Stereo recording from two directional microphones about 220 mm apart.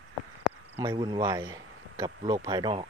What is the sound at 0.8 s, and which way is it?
A man's voice, 20° right (ahead or behind).